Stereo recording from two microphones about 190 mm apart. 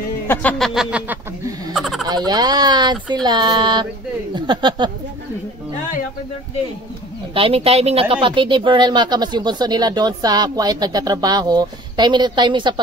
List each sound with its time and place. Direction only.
0.3 s speech: 10° left (ahead or behind)
2.0 s speech: 20° right (ahead or behind)
7.3 s speech: 30° right (ahead or behind)